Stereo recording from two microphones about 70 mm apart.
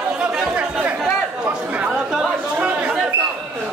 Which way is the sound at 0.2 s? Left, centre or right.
Centre.